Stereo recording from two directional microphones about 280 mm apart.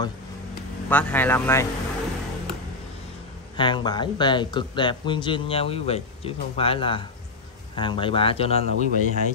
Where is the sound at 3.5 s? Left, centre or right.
Centre.